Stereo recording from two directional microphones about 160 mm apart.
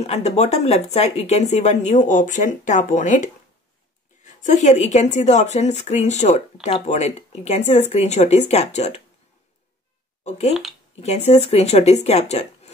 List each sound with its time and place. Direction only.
0.0 s speech: 45° left (ahead or behind)
10.2 s speech: 45° left (ahead or behind)